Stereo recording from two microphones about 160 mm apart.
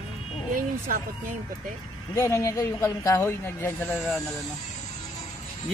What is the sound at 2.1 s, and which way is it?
Speech, 20° left (ahead or behind).